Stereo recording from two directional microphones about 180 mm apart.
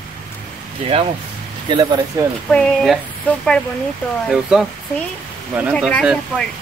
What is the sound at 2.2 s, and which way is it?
Speech, 15° right (ahead or behind).